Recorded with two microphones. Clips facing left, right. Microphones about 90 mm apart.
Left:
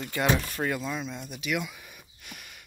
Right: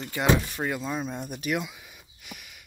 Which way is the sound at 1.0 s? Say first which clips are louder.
Right 3 dB; 45° right (ahead or behind).